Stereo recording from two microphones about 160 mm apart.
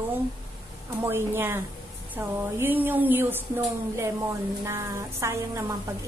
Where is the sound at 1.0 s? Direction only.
15° right (ahead or behind).